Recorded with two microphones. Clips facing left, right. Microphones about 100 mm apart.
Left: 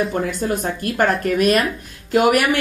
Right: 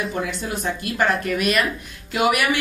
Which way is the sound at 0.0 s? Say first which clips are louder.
Left 5 dB; 45° left (ahead or behind).